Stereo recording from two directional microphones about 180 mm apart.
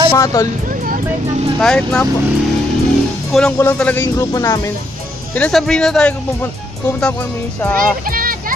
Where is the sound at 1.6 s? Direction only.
5° left (ahead or behind).